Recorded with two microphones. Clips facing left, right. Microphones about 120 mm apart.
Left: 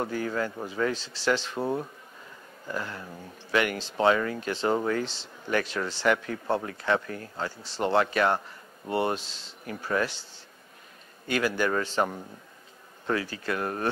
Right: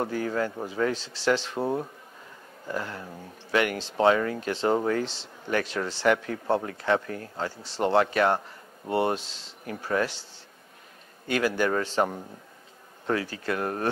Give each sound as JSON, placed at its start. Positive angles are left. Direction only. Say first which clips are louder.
{"t": 0.0, "sound": "speech", "louder": "right 2 dB", "side_deg": -35}
{"t": 2.6, "sound": "speech", "louder": "right 2 dB", "side_deg": -35}
{"t": 3.5, "sound": "speech", "louder": "right 1 dB", "side_deg": -45}
{"t": 11.2, "sound": "speech", "louder": "right 1 dB", "side_deg": -45}
{"t": 11.9, "sound": "speech", "louder": "right 2 dB", "side_deg": -25}
{"t": 13.0, "sound": "speech", "louder": "right 1 dB", "side_deg": -45}